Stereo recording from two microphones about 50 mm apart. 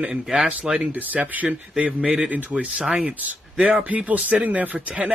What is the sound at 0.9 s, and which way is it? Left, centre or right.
Speech, right.